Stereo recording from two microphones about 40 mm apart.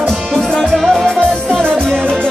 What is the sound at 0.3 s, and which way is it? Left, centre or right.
Music, centre.